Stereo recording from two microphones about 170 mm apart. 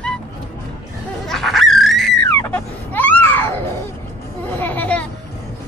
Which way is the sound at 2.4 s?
10° left (ahead or behind).